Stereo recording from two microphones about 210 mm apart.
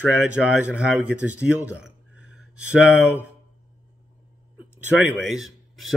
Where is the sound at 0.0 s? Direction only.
5° right (ahead or behind).